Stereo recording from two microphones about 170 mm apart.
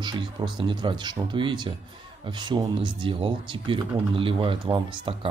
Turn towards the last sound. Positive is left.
turn(degrees=-30)  # may be behind; listen again after turning